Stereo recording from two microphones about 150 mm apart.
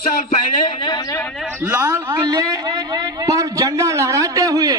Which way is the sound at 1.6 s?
15° right (ahead or behind).